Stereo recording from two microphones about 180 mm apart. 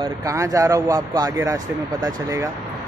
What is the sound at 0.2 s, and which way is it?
Speech, 20° right (ahead or behind).